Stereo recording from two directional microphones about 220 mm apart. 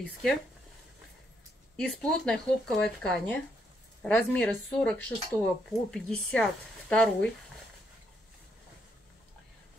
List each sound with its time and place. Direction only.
0.0 s speech: 5° left (ahead or behind)
1.8 s speech: 5° left (ahead or behind)